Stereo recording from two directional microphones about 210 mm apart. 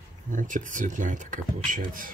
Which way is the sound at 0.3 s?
40° right (ahead or behind).